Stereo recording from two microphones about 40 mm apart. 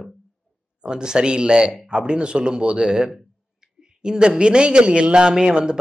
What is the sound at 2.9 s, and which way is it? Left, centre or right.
A man's voice, centre.